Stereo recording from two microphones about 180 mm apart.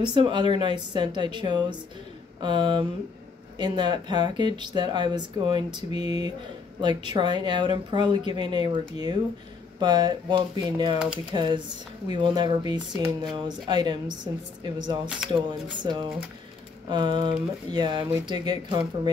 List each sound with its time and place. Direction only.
0.0 s speech: 25° right (ahead or behind)